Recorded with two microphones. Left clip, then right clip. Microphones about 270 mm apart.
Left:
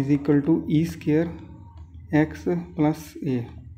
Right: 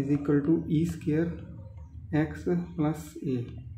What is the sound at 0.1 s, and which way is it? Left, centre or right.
A man's voice, left.